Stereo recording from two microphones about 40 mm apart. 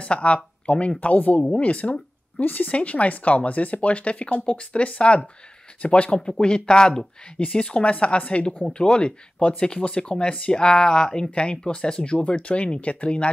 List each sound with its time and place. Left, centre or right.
0.0 s speech: left
2.4 s speech: left; by 7.1 s centre
7.3 s speech: left
8.6 s speech: left
11.2 s speech: left